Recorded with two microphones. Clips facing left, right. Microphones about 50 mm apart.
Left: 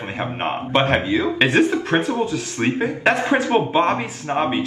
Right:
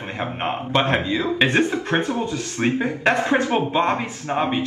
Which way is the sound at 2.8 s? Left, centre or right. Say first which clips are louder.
Left 2 dB; centre.